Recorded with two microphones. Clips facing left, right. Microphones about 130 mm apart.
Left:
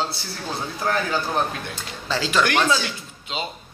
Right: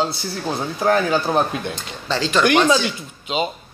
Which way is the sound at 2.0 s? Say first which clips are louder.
Right 2 dB; 5° left (ahead or behind).